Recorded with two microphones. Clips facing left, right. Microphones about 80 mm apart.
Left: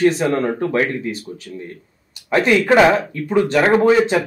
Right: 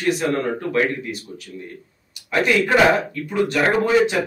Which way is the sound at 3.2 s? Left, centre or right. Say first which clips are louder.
Left 5 dB; left.